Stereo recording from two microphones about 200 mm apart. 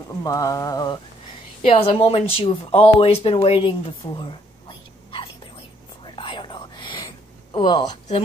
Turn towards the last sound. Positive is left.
turn(degrees=20)  # may be behind; listen again after turning